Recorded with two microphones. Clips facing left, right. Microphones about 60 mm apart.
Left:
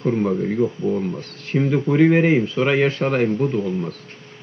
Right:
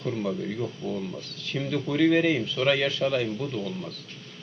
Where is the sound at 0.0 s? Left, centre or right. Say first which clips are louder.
Left 9 dB; left.